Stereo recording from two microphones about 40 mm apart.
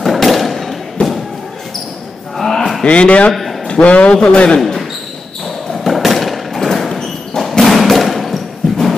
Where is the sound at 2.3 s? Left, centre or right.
Centre.